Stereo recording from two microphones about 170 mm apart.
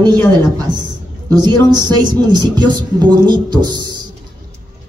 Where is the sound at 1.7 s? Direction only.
25° right (ahead or behind).